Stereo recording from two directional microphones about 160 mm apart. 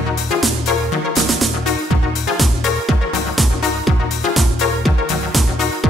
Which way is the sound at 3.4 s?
Centre (ahead or behind).